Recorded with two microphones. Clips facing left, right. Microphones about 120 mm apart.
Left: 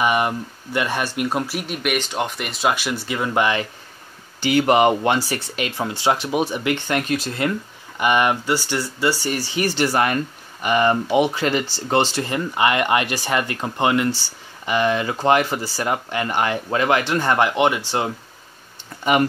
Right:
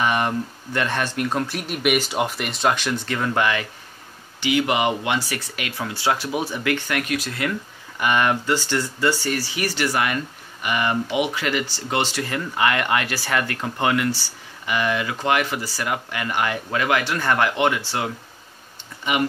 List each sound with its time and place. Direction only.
0.0 s speech: 10° left (ahead or behind)
1.6 s speech: centre (ahead or behind)
4.4 s speech: 40° left (ahead or behind)
8.0 s speech: 15° left (ahead or behind)
9.6 s speech: 25° left (ahead or behind)